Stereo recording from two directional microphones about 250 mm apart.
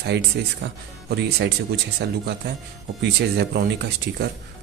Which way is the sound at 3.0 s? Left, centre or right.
Right.